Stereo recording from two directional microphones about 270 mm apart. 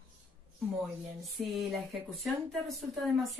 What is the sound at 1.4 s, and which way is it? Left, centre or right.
Speech, centre.